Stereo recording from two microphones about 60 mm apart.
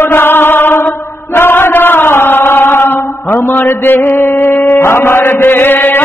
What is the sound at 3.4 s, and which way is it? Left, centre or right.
Mantra, left.